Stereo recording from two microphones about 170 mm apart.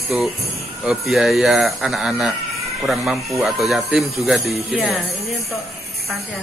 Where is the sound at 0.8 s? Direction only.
Centre (ahead or behind).